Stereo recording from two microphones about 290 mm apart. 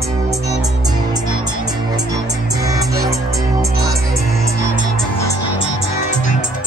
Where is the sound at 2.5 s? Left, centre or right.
Centre.